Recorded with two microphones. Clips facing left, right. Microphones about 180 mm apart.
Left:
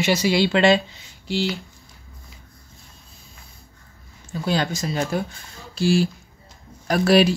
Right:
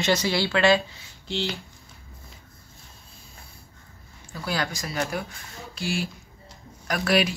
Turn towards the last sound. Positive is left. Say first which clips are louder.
# left 7 dB
turn(degrees=30)  # may be behind; listen again after turning